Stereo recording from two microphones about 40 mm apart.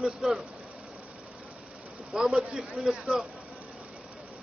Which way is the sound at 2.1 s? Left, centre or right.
Centre.